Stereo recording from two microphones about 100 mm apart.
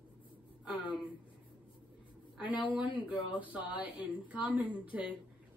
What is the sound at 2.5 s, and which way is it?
Speech, 55° left (ahead or behind).